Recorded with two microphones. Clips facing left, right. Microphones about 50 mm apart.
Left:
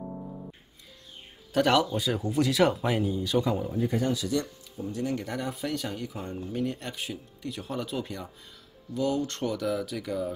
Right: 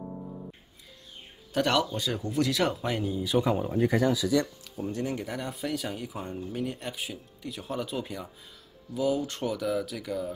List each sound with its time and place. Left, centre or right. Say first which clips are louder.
1.5 s speech: left 3 dB; centre
3.3 s speech: right 1 dB; right
3.7 s speech: right 3 dB; right
4.7 s speech: right 1 dB; right
5.2 s speech: left 1 dB; centre